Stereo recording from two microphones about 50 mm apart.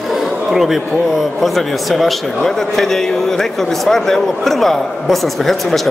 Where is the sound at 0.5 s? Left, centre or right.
Centre.